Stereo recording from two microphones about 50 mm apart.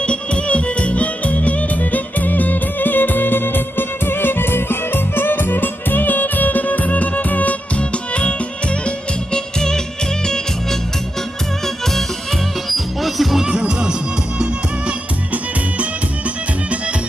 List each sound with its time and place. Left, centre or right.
0.0 s music: left; by 13.5 s centre
13.5 s music: centre